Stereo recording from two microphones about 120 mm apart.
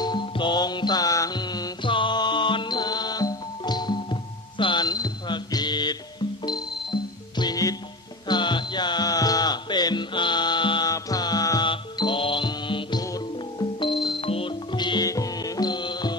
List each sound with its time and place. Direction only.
0.0 s music: 40° left (ahead or behind)
11.7 s music: 45° left (ahead or behind)
13.0 s music: 30° left (ahead or behind)
14.2 s music: 50° left (ahead or behind)